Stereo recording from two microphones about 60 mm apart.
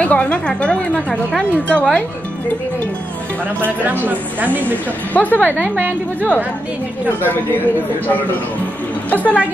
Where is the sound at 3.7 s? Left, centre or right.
Right.